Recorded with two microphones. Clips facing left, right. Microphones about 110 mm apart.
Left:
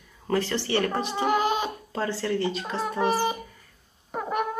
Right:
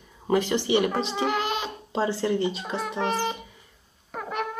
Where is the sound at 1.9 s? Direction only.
20° right (ahead or behind).